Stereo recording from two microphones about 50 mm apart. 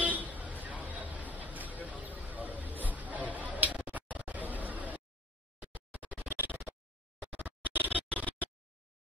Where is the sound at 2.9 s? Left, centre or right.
Right.